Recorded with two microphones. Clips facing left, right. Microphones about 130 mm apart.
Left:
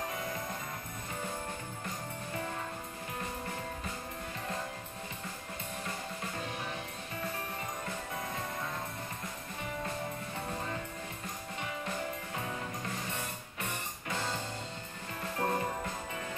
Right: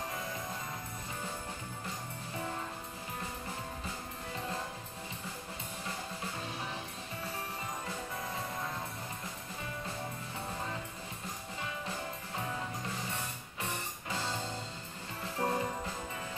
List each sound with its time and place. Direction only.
15.4 s jingle bell: 25° left (ahead or behind)